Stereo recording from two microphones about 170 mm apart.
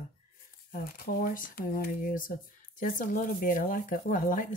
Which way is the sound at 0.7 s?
60° left (ahead or behind).